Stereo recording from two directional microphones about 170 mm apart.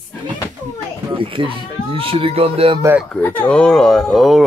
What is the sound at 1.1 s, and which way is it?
Speech, 30° right (ahead or behind).